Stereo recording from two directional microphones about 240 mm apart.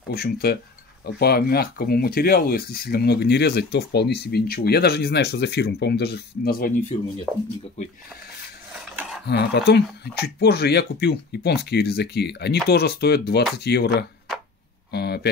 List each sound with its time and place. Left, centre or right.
0.1 s speech: left
9.3 s speech: left
14.9 s a sound: left